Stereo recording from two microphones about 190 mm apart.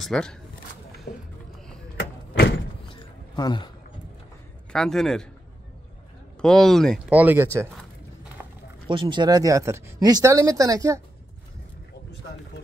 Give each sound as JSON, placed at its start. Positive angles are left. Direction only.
{"t": 0.0, "sound": "a man's voice", "side_deg": 5}
{"t": 1.1, "sound": "speech", "side_deg": 60}
{"t": 2.0, "sound": "vehicle", "side_deg": 60}
{"t": 2.9, "sound": "a sound", "side_deg": 25}
{"t": 4.7, "sound": "a man's voice", "side_deg": 0}
{"t": 6.4, "sound": "a man's voice", "side_deg": 0}
{"t": 7.1, "sound": "speech", "side_deg": -10}
{"t": 8.8, "sound": "speech", "side_deg": -25}